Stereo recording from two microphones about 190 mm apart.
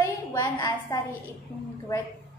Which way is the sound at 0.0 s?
15° left (ahead or behind).